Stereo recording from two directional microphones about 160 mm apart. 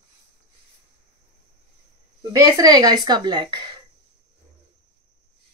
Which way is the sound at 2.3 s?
20° right (ahead or behind).